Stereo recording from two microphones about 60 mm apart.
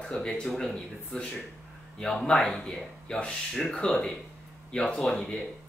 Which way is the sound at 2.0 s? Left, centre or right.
Centre.